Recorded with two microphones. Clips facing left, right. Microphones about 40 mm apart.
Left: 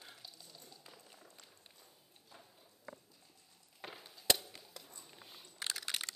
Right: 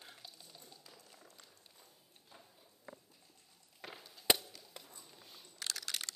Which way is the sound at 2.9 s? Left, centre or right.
Centre.